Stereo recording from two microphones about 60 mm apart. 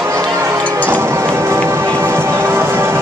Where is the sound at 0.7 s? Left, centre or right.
Right.